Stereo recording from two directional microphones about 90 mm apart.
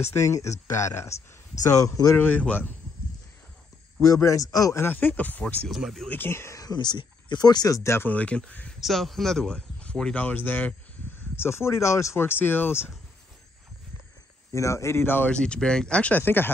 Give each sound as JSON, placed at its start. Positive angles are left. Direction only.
{"t": 0.0, "sound": "speech", "side_deg": 30}
{"t": 2.1, "sound": "speech", "side_deg": 20}
{"t": 4.1, "sound": "speech", "side_deg": 35}
{"t": 4.8, "sound": "speech", "side_deg": 20}
{"t": 5.7, "sound": "speech", "side_deg": 0}
{"t": 6.0, "sound": "speech", "side_deg": 25}
{"t": 6.6, "sound": "speech", "side_deg": 50}
{"t": 8.1, "sound": "speech", "side_deg": 15}
{"t": 8.8, "sound": "speech", "side_deg": 0}
{"t": 14.5, "sound": "speech", "side_deg": 35}
{"t": 15.3, "sound": "speech", "side_deg": 10}